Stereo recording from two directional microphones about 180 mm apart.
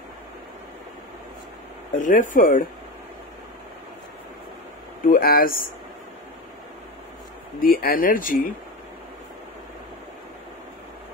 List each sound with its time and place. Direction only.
2.0 s speech: 45° left (ahead or behind)
5.0 s speech: 55° left (ahead or behind)
7.6 s speech: 55° left (ahead or behind)